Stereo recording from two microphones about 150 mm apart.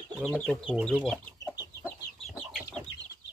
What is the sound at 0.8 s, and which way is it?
Speech, centre (ahead or behind).